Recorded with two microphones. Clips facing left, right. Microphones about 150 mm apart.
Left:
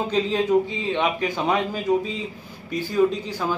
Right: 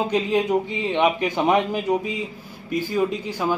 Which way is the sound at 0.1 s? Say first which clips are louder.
Left 4 dB; 15° right (ahead or behind).